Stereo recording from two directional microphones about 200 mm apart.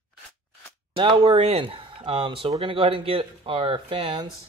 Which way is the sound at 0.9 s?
25° right (ahead or behind).